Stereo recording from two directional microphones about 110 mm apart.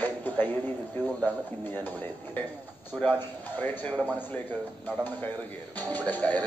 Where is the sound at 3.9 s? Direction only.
10° right (ahead or behind).